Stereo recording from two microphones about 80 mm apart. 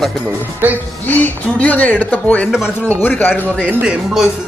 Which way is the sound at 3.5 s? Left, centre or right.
Centre.